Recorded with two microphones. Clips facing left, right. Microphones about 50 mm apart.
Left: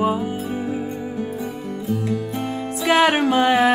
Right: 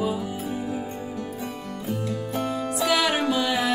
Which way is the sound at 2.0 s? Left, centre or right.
Left.